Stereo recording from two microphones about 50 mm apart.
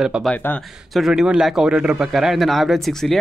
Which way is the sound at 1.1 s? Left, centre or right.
Centre.